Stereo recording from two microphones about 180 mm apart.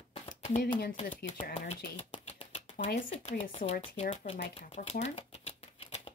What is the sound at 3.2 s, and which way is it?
Speech, 35° left (ahead or behind).